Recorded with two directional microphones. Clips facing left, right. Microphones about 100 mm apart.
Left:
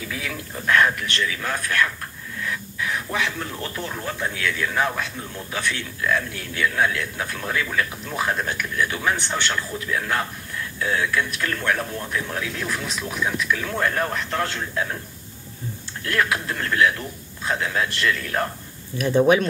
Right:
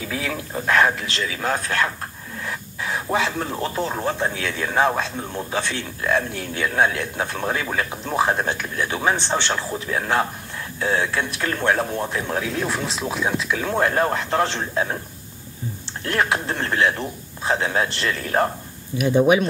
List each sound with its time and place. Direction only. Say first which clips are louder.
0.1 s a sound: right 8 dB; 30° right (ahead or behind)
0.7 s speech: right 1 dB; 25° right (ahead or behind)
2.4 s a sound: left 1 dB; 25° right (ahead or behind)
3.4 s speech: right 6 dB; 25° right (ahead or behind)
16.1 s speech: right 2 dB; 25° right (ahead or behind)
18.9 s speech: right 1 dB; 15° right (ahead or behind)